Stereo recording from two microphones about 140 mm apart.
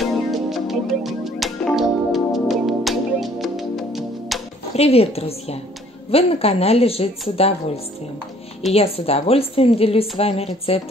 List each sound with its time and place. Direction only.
0.0 s music: centre (ahead or behind)
4.7 s a woman's voice: 45° left (ahead or behind)